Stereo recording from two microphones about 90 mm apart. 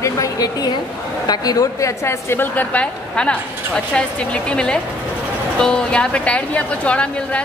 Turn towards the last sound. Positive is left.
turn(degrees=15)  # may be behind; listen again after turning